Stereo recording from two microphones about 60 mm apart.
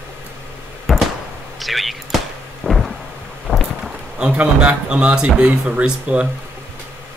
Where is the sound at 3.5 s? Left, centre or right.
Centre.